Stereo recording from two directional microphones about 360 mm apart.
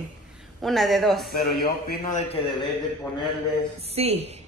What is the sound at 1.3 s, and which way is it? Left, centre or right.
A man's voice, left.